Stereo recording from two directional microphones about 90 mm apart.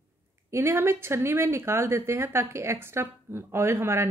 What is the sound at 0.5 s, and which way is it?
A woman's voice, 30° right (ahead or behind).